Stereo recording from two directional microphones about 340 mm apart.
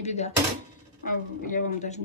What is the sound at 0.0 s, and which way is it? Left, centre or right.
Speech, centre.